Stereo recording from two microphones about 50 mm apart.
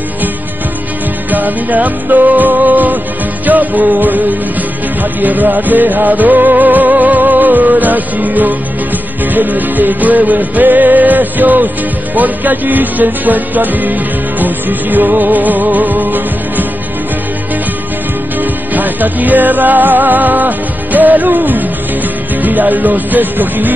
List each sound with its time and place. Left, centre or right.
1.3 s music: right
5.2 s music: right
18.4 s music: right